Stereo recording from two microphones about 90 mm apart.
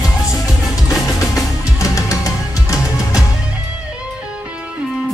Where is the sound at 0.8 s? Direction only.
35° left (ahead or behind).